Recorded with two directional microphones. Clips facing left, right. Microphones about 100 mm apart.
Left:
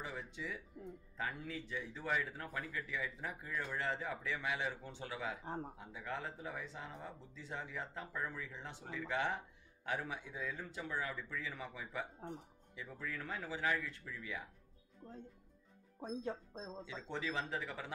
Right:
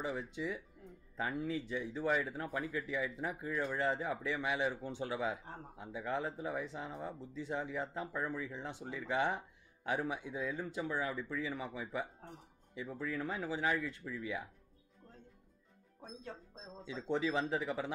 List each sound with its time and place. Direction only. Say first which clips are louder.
0.0 s speech: right 6 dB; 20° right (ahead or behind)
5.4 s speech: left 6 dB; 25° left (ahead or behind)
5.9 s speech: right 7 dB; 20° right (ahead or behind)
15.0 s speech: left 7 dB; 25° left (ahead or behind)
16.8 s speech: right 9 dB; 15° right (ahead or behind)